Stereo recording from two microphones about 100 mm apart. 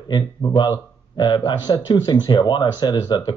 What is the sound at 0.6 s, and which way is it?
Speech, 50° left (ahead or behind).